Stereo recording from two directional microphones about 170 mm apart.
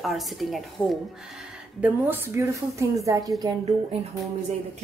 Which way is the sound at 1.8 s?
10° right (ahead or behind).